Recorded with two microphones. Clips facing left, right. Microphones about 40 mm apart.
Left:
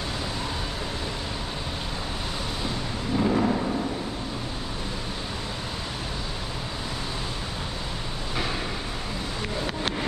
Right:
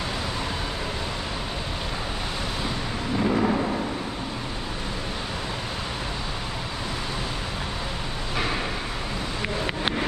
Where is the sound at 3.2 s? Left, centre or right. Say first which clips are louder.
Even; centre.